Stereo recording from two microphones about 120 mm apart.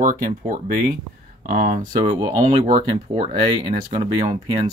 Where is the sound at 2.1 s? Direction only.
30° right (ahead or behind).